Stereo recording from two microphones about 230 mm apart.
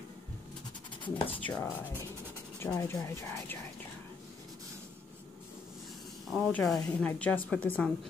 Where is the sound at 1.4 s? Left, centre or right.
Centre.